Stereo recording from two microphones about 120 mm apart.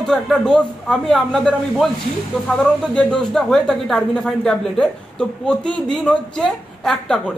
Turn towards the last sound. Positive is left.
turn(degrees=5)  # may be behind; listen again after turning